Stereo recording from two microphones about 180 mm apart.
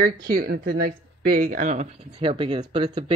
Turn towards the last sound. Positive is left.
turn(degrees=-30)  # may be behind; listen again after turning